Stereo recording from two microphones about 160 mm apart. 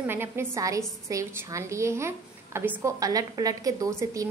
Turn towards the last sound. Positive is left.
turn(degrees=-20)  # may be behind; listen again after turning